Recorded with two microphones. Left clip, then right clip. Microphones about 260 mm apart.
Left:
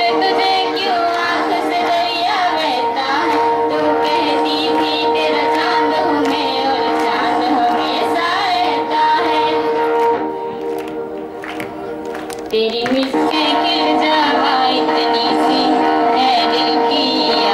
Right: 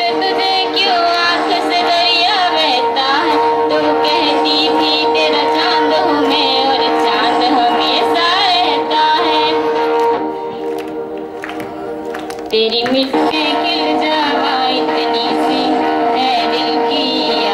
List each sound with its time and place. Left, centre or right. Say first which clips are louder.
0.0 s music: even; centre
12.5 s music: right 3 dB; centre